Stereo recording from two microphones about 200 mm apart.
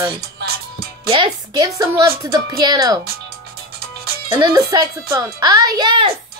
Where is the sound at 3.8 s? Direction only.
50° right (ahead or behind).